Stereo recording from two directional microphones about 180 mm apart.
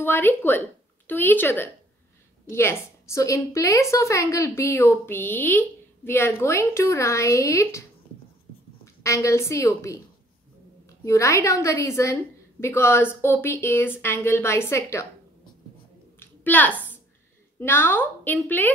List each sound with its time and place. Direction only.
0.0 s a woman's voice: 10° left (ahead or behind)
9.0 s a woman's voice: 15° left (ahead or behind)
11.1 s a woman's voice: 15° left (ahead or behind)
16.2 s a sound: 10° left (ahead or behind)
16.7 s a sound: 10° right (ahead or behind)
17.6 s a woman's voice: 10° left (ahead or behind)